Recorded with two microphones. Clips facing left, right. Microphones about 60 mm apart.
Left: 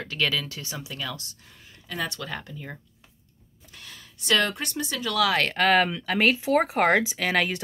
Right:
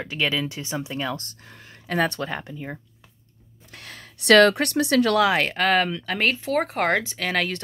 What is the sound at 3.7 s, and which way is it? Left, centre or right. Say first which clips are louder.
Speech: right 5 dB; right.